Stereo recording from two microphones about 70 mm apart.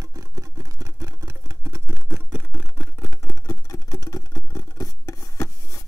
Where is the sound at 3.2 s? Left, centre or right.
Left.